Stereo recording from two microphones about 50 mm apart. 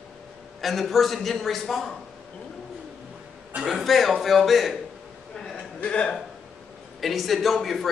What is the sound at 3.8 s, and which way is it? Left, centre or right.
A man's voice, centre.